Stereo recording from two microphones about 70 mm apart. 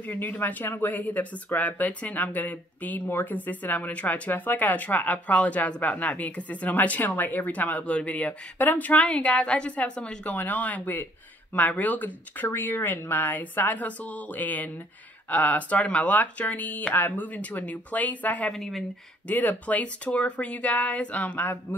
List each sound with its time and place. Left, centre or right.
0.0 s speech: left
18.5 s a woman's voice: centre
19.2 s speech: left